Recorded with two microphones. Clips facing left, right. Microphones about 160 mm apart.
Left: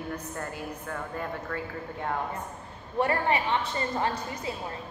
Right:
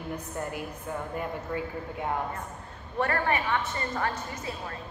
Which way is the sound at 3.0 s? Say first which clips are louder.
Left 2 dB; 20° left (ahead or behind).